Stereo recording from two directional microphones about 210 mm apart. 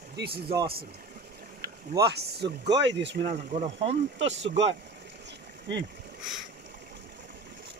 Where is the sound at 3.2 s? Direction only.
30° right (ahead or behind).